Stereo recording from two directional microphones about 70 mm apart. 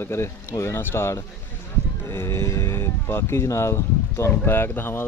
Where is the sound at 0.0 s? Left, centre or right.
Left.